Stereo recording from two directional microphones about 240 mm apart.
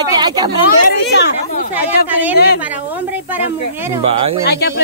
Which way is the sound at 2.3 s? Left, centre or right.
Left.